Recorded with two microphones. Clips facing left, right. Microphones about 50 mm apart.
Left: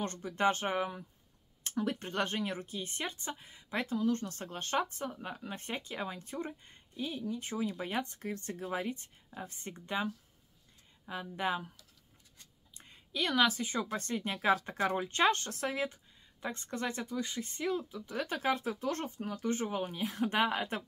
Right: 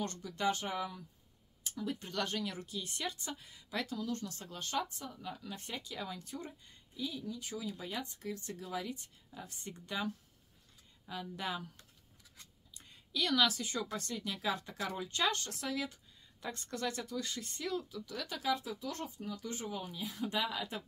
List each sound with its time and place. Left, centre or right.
0.0 s a woman's voice: left
1.6 s a sound: left
2.0 s a woman's voice: left
12.7 s a woman's voice: left